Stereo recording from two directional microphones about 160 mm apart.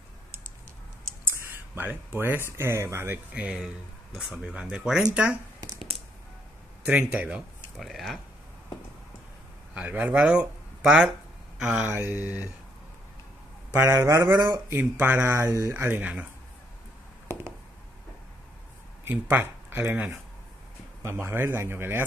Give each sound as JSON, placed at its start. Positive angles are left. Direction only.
{"t": 1.8, "sound": "speech", "side_deg": -15}
{"t": 6.9, "sound": "speech", "side_deg": -10}
{"t": 9.8, "sound": "speech", "side_deg": -10}
{"t": 13.7, "sound": "speech", "side_deg": -15}
{"t": 14.8, "sound": "speech", "side_deg": -10}
{"t": 19.2, "sound": "speech", "side_deg": -15}